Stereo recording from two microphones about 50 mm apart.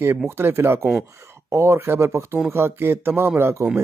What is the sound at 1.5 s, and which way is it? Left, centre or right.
Speech, right.